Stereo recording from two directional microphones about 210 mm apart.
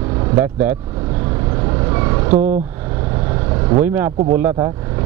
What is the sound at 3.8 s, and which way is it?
Speech, 10° right (ahead or behind).